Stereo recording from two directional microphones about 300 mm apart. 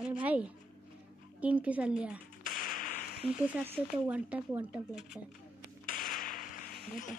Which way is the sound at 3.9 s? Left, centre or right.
Centre.